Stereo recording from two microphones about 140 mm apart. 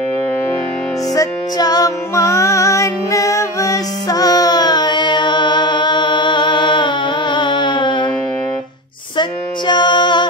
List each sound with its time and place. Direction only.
1.1 s music: 25° left (ahead or behind)
9.1 s music: 30° left (ahead or behind)